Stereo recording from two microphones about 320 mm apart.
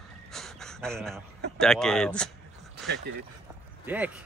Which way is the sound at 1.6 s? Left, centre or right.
Centre.